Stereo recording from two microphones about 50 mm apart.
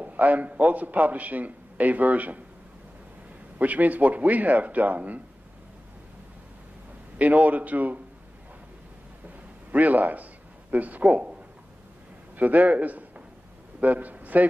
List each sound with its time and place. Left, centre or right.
0.0 s a man's voice: right
3.5 s a man's voice: right
7.2 s a man's voice: right
9.7 s a man's voice: right
12.4 s a man's voice: right